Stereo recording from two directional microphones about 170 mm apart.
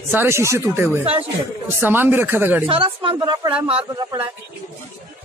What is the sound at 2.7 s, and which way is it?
Speech, 30° right (ahead or behind).